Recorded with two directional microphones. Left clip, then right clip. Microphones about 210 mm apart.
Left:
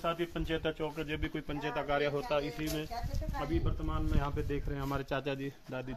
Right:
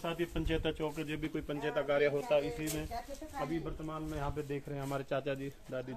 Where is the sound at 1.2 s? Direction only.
40° left (ahead or behind).